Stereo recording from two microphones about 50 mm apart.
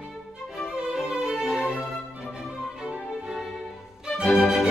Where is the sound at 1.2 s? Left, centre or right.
Centre.